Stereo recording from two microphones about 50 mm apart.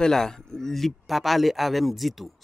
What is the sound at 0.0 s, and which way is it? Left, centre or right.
Speech, centre.